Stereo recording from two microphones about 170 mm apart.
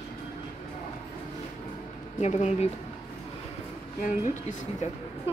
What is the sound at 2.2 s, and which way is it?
Speech, 40° left (ahead or behind).